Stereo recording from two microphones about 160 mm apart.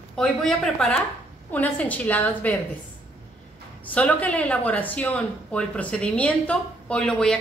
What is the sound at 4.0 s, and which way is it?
A woman's voice, 10° left (ahead or behind).